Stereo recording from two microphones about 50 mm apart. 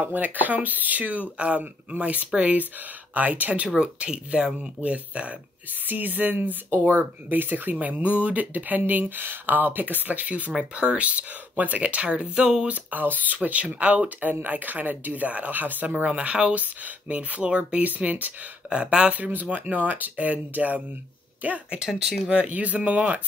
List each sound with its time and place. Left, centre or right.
0.1 s speech: right
10.6 s speech: right
12.4 s speech: centre
12.6 s speech: right
18.7 s speech: right
19.1 s speech: right
21.7 s speech: centre
22.3 s speech: right